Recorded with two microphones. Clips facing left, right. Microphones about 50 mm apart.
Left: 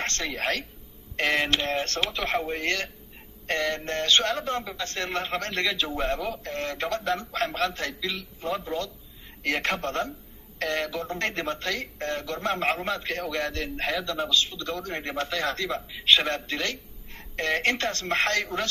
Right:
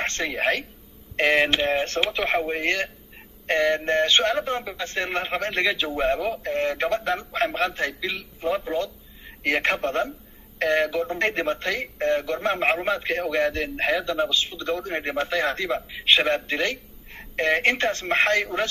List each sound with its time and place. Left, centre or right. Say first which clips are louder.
0.0 s speech: right 4 dB; centre